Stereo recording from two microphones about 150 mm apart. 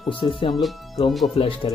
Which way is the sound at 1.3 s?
40° left (ahead or behind).